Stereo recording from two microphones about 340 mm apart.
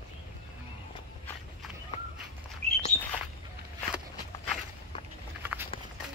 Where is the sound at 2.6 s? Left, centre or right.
Centre.